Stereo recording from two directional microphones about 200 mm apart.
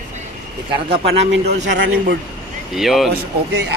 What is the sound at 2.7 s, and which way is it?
Speech, centre (ahead or behind).